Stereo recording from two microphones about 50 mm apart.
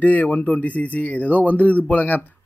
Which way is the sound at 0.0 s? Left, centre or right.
Left.